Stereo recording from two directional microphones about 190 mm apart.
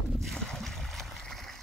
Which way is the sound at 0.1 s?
Centre (ahead or behind).